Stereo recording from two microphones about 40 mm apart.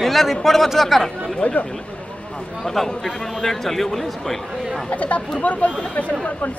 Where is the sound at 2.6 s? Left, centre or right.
Centre.